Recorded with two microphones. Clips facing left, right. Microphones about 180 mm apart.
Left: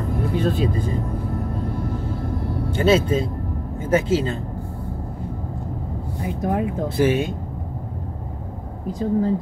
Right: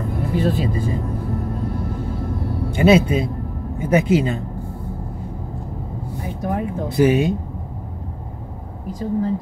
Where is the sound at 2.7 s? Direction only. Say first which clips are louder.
Right 3 dB; 15° right (ahead or behind).